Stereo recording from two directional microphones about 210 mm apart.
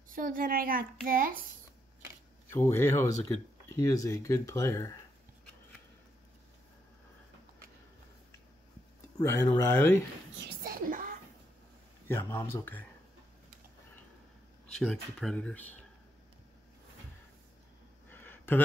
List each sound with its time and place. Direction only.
0.1 s a woman's voice: 40° right (ahead or behind)
2.5 s speech: 10° left (ahead or behind)
9.2 s speech: 15° left (ahead or behind)
10.6 s a sound: 40° right (ahead or behind)
12.1 s speech: 10° left (ahead or behind)
14.7 s speech: centre (ahead or behind)
18.1 s a sound: 10° left (ahead or behind)